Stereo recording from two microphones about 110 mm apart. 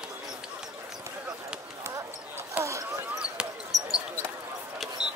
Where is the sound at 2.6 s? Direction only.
10° right (ahead or behind).